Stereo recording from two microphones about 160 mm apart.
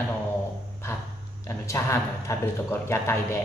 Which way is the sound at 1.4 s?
20° left (ahead or behind).